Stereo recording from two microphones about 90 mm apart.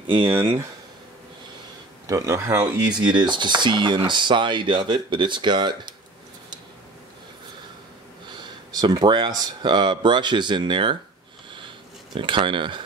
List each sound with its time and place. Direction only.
0.0 s speech: 70° right (ahead or behind)
0.3 s speech: 25° right (ahead or behind)
2.0 s speech: 40° right (ahead or behind)
2.6 s speech: 55° right (ahead or behind)
8.3 s a sound: 55° right (ahead or behind)
8.9 s speech: 55° right (ahead or behind)
12.1 s speech: 65° right (ahead or behind)